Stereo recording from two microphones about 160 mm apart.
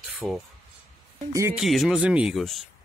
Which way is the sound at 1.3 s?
20° right (ahead or behind).